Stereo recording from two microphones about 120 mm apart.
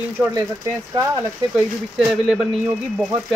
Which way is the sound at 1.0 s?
25° right (ahead or behind).